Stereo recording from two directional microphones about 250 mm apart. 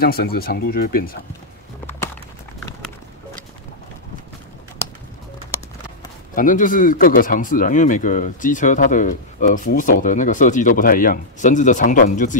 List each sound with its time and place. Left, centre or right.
0.0 s speech: left
6.3 s speech: left